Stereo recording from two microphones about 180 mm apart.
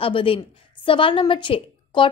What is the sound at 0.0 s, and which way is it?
A woman's voice, 30° left (ahead or behind).